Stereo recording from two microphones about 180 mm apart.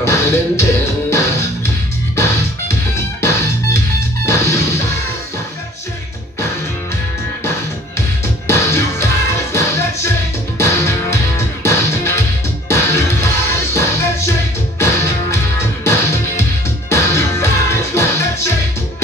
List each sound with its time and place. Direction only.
0.0 s music: 15° left (ahead or behind)
2.7 s music: 15° left (ahead or behind)
8.5 s music: 15° left (ahead or behind)